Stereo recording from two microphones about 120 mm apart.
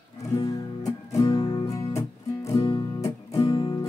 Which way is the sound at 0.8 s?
30° left (ahead or behind).